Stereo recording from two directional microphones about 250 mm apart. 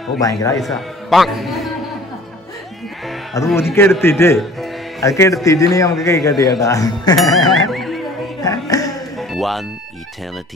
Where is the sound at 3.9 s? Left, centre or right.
Centre.